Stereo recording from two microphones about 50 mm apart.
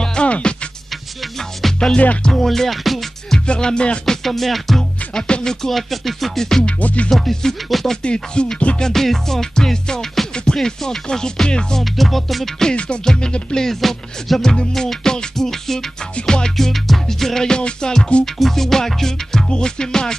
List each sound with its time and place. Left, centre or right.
0.0 s music: centre
1.6 s music: centre
3.3 s music: centre
4.0 s music: centre
6.8 s music: left
7.1 s music: centre
8.0 s music: centre
8.8 s music: centre
11.8 s music: centre
12.6 s music: left
13.7 s music: centre